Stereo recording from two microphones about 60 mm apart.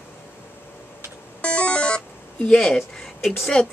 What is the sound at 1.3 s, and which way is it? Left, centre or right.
Music, centre.